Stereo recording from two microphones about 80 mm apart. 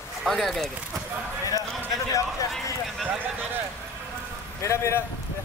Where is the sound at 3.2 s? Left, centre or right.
Right.